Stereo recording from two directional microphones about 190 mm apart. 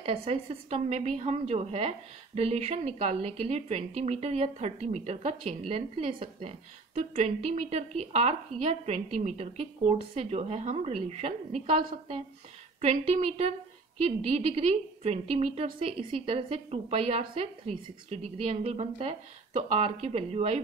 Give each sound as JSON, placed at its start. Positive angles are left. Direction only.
{"t": 0.0, "sound": "a woman's voice", "side_deg": -30}